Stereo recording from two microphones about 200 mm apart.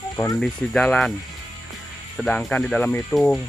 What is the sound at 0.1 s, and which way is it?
Speech, 15° left (ahead or behind).